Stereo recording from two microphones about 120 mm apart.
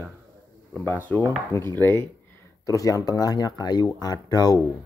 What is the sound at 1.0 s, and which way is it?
Dishes, 15° left (ahead or behind).